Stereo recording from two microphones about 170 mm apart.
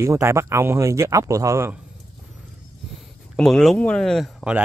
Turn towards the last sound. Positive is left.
turn(degrees=-5)  # may be behind; listen again after turning